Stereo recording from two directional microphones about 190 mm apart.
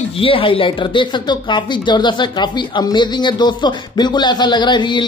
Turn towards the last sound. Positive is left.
turn(degrees=25)  # may be behind; listen again after turning